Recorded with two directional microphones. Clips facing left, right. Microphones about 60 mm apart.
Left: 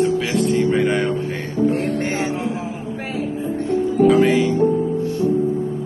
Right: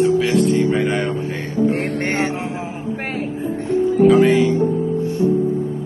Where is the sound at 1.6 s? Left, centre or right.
Right.